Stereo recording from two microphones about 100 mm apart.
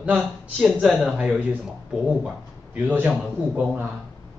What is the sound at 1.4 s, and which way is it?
Speech, 15° right (ahead or behind).